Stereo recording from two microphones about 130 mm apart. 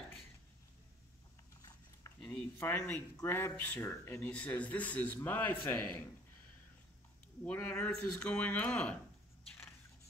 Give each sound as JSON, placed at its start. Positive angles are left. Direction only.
{"t": 2.2, "sound": "speech", "side_deg": 15}
{"t": 5.6, "sound": "a man's voice", "side_deg": 30}
{"t": 7.4, "sound": "speech", "side_deg": 10}